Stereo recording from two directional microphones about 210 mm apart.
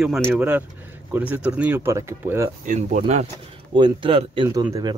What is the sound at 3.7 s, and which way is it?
Speech, 20° right (ahead or behind).